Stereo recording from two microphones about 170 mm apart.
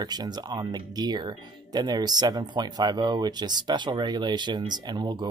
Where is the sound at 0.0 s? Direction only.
25° right (ahead or behind).